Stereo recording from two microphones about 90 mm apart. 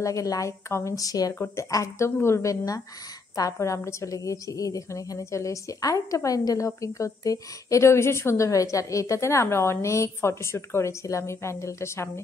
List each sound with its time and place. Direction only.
0.0 s a woman's voice: 40° left (ahead or behind)
1.4 s a woman's voice: 30° left (ahead or behind)